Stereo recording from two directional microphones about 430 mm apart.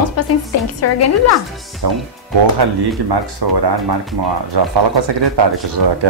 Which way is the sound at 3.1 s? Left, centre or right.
Right.